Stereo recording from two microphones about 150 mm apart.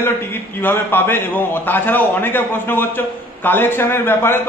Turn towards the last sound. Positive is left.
turn(degrees=15)  # may be behind; listen again after turning